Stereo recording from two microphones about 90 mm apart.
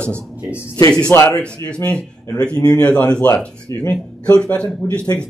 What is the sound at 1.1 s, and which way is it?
Speech, 30° left (ahead or behind).